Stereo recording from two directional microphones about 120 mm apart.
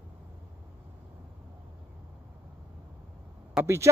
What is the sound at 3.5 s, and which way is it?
Speech, 20° right (ahead or behind).